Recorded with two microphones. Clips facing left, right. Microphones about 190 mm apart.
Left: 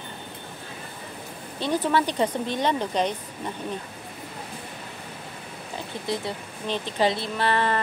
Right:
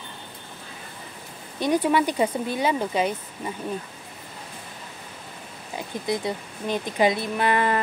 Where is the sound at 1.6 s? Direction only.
10° right (ahead or behind).